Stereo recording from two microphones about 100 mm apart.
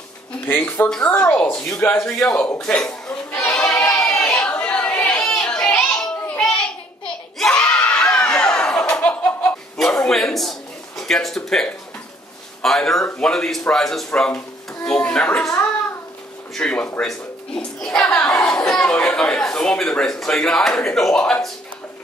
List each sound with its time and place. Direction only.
0.5 s speech: 20° left (ahead or behind)
2.0 s a man's voice: 5° left (ahead or behind)
3.5 s choir: 10° left (ahead or behind)
4.0 s chatter: 10° left (ahead or behind)
5.8 s a sound: 10° left (ahead or behind)
9.8 s a sound: 5° left (ahead or behind)
12.6 s a man's voice: 5° left (ahead or behind)
16.5 s speech: 10° left (ahead or behind)
18.0 s speech: 30° left (ahead or behind)
18.3 s speech: 5° left (ahead or behind)